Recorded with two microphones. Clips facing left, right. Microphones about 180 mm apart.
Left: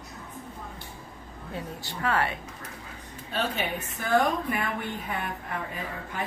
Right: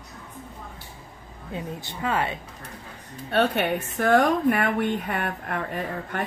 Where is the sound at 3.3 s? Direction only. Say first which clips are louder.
Right 8 dB; 70° right (ahead or behind).